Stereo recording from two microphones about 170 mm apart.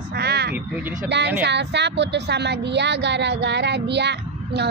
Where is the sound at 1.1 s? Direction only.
90° right.